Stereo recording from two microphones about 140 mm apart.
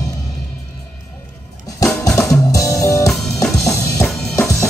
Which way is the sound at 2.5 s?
20° left (ahead or behind).